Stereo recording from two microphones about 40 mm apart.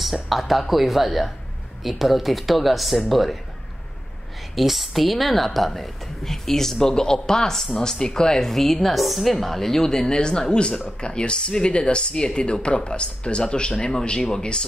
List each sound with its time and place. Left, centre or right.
0.0 s speech: centre
4.6 s a woman's voice: centre